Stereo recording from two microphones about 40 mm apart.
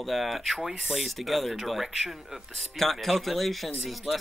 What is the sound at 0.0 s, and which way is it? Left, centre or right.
Speech, centre.